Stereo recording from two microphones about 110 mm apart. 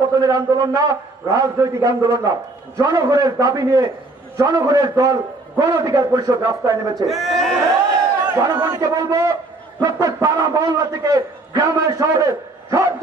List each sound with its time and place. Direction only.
0.2 s a man's voice: 35° right (ahead or behind)
7.1 s a man's voice: centre (ahead or behind)
8.5 s a man's voice: 40° right (ahead or behind)